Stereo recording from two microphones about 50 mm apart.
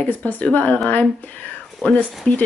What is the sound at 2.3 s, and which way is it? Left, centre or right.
Speech, left.